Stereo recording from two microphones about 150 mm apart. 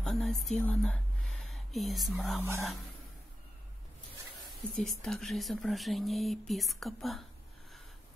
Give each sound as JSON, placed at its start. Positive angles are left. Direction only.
{"t": 0.0, "sound": "speech", "side_deg": 0}
{"t": 2.3, "sound": "speech", "side_deg": -15}
{"t": 4.5, "sound": "speech", "side_deg": 0}